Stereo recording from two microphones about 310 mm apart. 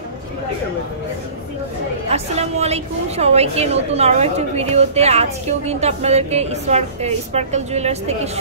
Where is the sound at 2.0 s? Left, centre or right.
Right.